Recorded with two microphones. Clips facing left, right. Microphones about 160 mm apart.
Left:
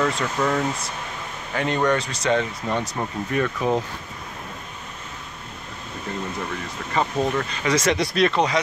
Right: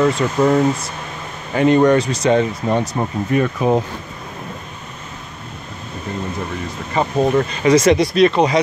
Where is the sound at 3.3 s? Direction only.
15° right (ahead or behind).